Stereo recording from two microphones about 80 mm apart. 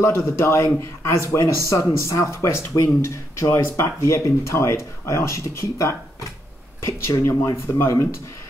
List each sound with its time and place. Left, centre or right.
0.1 s speech: left